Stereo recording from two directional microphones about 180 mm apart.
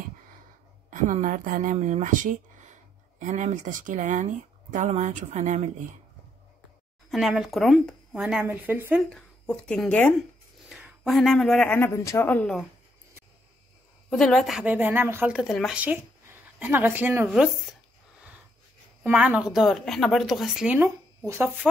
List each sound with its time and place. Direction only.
0.8 s speech: 45° right (ahead or behind)
7.1 s speech: centre (ahead or behind)
9.1 s a woman's voice: 5° left (ahead or behind)
14.1 s a woman's voice: 5° left (ahead or behind)
19.0 s speech: 10° right (ahead or behind)